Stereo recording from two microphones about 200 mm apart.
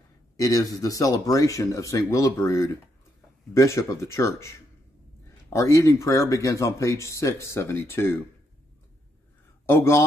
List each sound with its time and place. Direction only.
0.4 s speech: 15° left (ahead or behind)
9.7 s speech: 15° left (ahead or behind)